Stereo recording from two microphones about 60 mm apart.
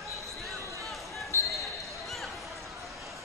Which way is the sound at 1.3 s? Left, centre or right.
Left.